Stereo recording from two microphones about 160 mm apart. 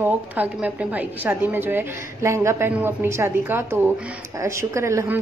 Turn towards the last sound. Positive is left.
turn(degrees=-15)  # may be behind; listen again after turning